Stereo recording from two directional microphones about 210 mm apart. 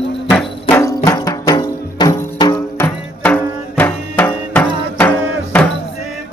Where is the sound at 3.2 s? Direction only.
5° left (ahead or behind).